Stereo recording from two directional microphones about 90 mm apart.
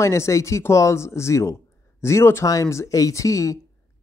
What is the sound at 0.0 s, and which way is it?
Speech, 35° left (ahead or behind).